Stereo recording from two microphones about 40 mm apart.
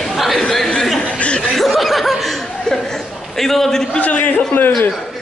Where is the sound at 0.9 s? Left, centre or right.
Left.